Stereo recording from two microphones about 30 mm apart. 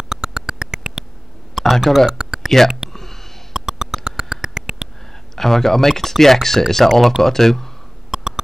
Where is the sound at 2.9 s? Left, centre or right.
Centre.